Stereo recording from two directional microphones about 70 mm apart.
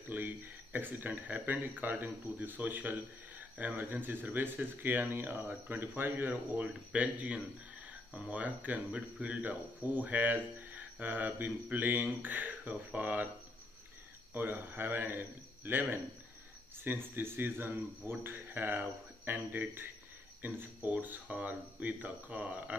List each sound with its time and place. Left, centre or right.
0.1 s speech: right
14.3 s a man's voice: right